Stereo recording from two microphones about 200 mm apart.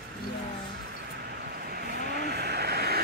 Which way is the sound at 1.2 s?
50° right (ahead or behind).